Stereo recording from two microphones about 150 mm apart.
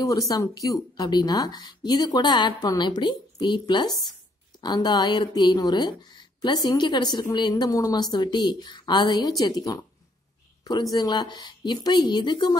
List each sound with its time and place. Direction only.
0.0 s speech: 25° left (ahead or behind)